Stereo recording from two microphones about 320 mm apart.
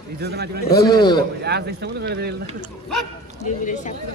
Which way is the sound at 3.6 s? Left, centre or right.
Left.